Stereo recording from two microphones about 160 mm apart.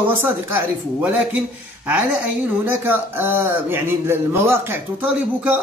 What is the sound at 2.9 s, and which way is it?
Speech, 15° right (ahead or behind).